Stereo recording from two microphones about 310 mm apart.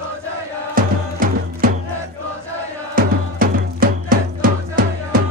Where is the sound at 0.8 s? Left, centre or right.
Right.